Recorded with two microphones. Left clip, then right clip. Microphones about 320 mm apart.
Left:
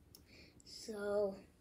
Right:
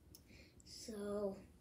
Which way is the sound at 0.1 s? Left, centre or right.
Centre.